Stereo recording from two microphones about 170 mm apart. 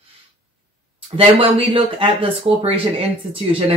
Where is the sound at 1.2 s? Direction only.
30° right (ahead or behind).